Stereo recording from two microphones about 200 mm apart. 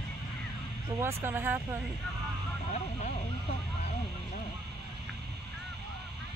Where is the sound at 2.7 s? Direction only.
35° left (ahead or behind).